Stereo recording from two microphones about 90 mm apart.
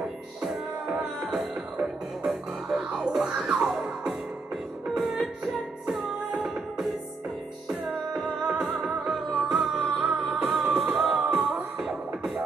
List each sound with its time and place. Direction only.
1.2 s music: centre (ahead or behind)